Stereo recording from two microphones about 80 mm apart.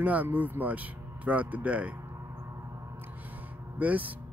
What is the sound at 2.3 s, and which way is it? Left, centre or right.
Gong, right.